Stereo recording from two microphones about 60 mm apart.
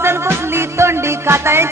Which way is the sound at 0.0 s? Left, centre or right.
Right.